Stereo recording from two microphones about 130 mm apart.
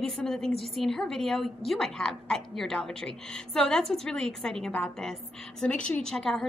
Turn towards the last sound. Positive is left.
turn(degrees=5)  # may be behind; listen again after turning